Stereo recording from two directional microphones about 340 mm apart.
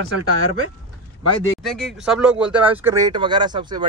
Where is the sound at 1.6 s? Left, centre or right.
Centre.